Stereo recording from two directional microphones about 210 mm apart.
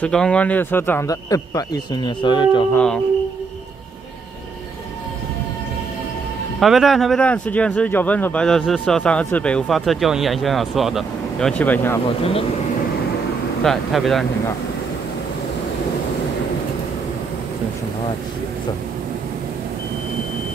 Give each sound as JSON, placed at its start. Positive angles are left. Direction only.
{"t": 0.0, "sound": "a man's voice", "side_deg": 5}
{"t": 2.7, "sound": "speech", "side_deg": 5}
{"t": 6.6, "sound": "speech", "side_deg": 0}
{"t": 12.2, "sound": "speech", "side_deg": 25}
{"t": 13.6, "sound": "speech", "side_deg": 0}